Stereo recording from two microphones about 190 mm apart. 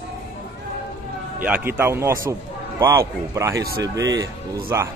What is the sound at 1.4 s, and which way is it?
A man's voice, 10° right (ahead or behind).